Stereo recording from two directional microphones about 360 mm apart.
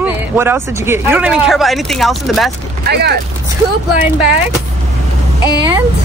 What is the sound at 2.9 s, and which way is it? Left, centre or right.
Speech, right.